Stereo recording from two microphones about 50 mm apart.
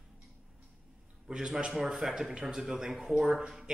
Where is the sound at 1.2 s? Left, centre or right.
Centre.